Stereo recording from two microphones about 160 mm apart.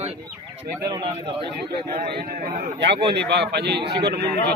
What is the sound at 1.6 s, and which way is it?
A man's voice, 75° right (ahead or behind).